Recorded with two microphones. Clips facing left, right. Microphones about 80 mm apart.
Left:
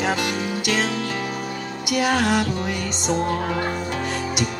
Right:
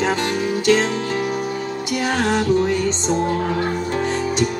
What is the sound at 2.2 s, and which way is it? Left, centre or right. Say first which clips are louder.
Music: right 1 dB; right.